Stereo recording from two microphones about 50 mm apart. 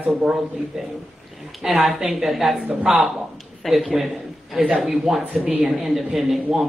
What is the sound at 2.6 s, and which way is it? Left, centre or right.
Speech, right.